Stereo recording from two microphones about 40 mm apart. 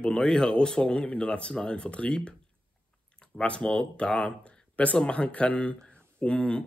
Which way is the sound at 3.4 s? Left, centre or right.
Left.